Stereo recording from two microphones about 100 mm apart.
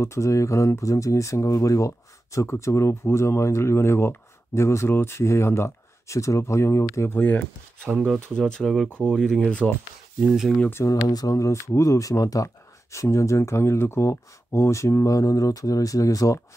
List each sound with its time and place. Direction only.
0.0 s speech: 30° left (ahead or behind)
7.8 s speech: 10° left (ahead or behind)
10.2 s speech: 5° right (ahead or behind)
10.7 s speech: 30° left (ahead or behind)